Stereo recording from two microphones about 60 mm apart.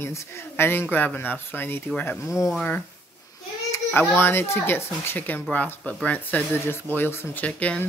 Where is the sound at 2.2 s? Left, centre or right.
Left.